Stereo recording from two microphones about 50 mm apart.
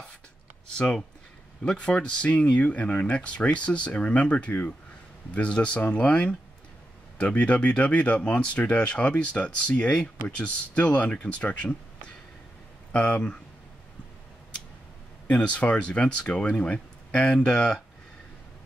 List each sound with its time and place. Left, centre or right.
1.6 s speech: centre
12.9 s speech: centre
15.5 s speech: left
17.2 s speech: centre